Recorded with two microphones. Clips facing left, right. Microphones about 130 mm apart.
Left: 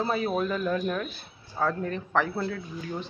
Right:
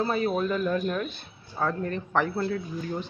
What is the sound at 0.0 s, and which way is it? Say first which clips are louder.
Speech: right 1 dB; 5° left (ahead or behind).